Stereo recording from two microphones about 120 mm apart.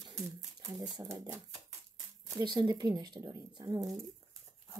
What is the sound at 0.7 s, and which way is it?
Speech, 30° right (ahead or behind).